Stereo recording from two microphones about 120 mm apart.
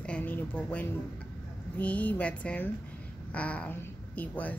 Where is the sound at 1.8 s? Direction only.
10° left (ahead or behind).